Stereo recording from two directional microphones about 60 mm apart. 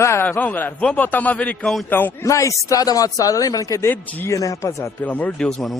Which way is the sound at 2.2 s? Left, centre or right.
Left.